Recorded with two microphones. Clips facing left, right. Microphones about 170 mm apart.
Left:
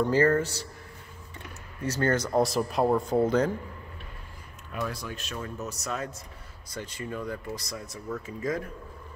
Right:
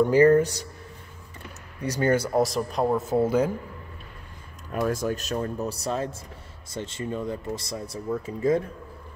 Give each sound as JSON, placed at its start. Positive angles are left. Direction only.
{"t": 0.1, "sound": "speech", "side_deg": -15}
{"t": 1.8, "sound": "speech", "side_deg": -15}
{"t": 4.7, "sound": "speech", "side_deg": -45}